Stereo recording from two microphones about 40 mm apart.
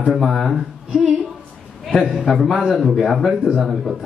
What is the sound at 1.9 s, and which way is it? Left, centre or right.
Speech, centre.